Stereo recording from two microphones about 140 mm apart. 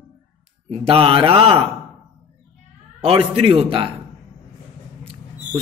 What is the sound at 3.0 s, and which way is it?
Speech, 40° right (ahead or behind).